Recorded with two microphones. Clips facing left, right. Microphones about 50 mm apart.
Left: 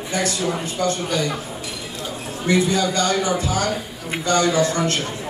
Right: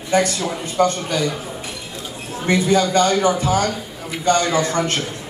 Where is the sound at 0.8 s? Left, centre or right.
Right.